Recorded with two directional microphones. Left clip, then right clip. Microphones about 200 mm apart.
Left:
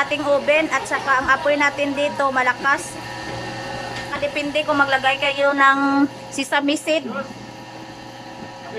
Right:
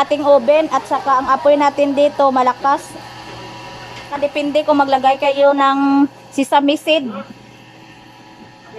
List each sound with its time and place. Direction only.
0.0 s speech: 15° right (ahead or behind)
4.3 s speech: 15° right (ahead or behind)